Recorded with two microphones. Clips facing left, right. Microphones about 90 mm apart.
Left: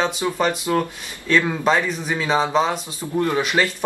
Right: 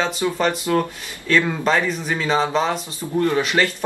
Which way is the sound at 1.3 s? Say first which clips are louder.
Even; 5° left (ahead or behind).